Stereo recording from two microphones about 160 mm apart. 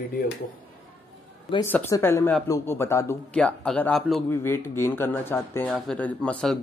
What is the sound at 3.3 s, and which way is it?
Speech, 5° left (ahead or behind).